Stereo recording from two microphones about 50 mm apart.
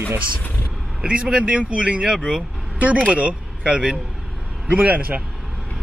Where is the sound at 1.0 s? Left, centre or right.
Right.